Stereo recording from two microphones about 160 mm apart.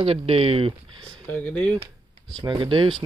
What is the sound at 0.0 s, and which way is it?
Speech, 35° right (ahead or behind).